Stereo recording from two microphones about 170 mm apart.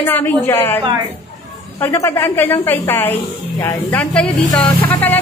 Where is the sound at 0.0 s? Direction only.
10° left (ahead or behind).